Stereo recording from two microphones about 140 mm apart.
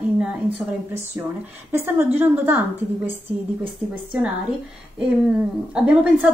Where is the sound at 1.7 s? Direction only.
15° right (ahead or behind).